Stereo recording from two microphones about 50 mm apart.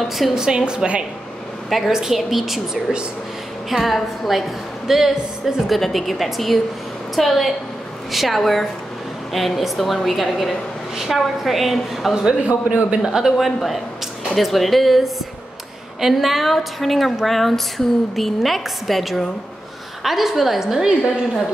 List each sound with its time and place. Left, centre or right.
0.3 s a woman's voice: centre
1.7 s a woman's voice: centre
12.3 s a man's voice: right
13.2 s a woman's voice: centre